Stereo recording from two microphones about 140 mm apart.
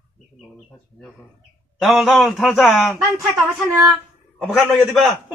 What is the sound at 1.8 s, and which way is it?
A man's voice, centre (ahead or behind).